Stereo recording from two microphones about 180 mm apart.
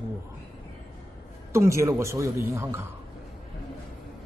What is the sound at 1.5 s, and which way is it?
Speech, 15° right (ahead or behind).